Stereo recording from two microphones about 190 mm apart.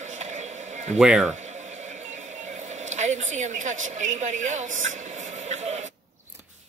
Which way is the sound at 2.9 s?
40° right (ahead or behind).